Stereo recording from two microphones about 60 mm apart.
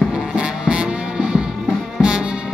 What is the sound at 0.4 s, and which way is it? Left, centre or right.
Music, centre.